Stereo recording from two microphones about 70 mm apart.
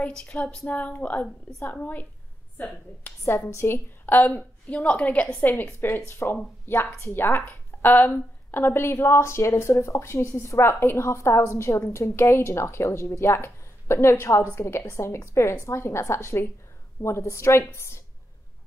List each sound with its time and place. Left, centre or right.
0.0 s a woman's voice: centre
3.3 s a woman's voice: left; by 5.1 s centre
5.4 s speech: left